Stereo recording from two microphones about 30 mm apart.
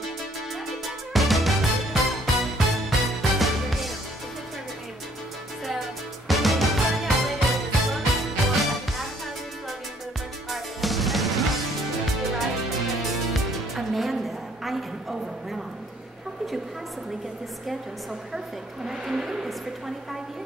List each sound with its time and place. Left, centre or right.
0.8 s music: centre
5.7 s music: centre
10.5 s music: centre
13.3 s music: centre
18.9 s a sound: centre